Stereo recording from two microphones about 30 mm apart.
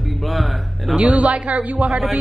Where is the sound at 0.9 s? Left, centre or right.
Right.